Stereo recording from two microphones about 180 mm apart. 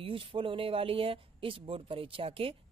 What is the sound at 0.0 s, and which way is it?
Speech, 30° right (ahead or behind).